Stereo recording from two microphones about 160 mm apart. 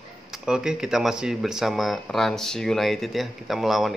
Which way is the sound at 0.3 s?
5° right (ahead or behind).